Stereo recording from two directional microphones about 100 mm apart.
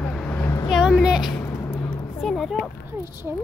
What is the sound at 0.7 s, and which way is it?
Speech, centre (ahead or behind).